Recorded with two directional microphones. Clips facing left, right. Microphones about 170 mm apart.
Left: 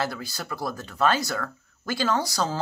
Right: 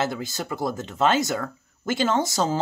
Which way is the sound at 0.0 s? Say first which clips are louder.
Right 3 dB; 20° right (ahead or behind).